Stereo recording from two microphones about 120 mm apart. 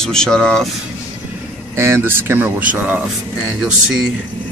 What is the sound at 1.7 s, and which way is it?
Speech, 20° right (ahead or behind).